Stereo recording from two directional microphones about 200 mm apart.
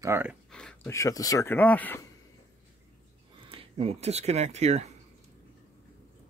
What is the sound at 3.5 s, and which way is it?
Speech, 30° right (ahead or behind).